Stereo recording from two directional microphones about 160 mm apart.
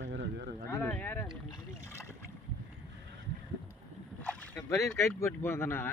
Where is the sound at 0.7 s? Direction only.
10° left (ahead or behind).